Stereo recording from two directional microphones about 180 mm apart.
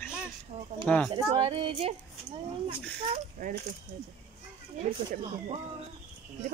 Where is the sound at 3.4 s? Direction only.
55° right (ahead or behind).